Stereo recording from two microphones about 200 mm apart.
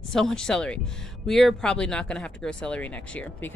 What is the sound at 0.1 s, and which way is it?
Speech, 5° left (ahead or behind).